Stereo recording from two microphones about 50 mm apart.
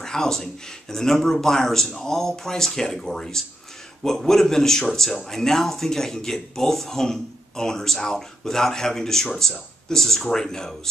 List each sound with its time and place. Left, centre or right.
0.0 s speech: centre